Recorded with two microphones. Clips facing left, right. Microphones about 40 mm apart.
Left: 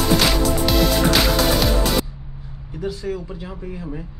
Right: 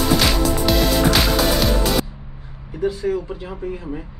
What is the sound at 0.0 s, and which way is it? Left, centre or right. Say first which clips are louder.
Music: even; centre.